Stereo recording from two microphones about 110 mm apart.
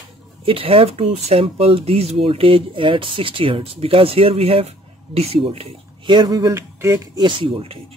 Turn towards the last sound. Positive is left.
turn(degrees=-60)  # may be behind; listen again after turning